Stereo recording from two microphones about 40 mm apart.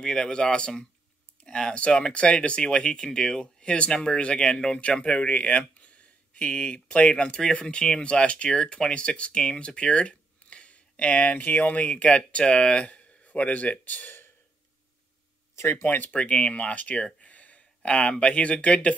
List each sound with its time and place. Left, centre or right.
0.0 s speech: left
15.8 s speech: left
16.1 s speech: left
17.9 s speech: left